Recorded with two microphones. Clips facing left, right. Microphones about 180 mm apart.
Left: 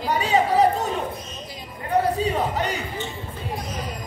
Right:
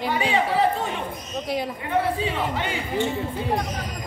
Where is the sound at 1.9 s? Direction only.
40° left (ahead or behind).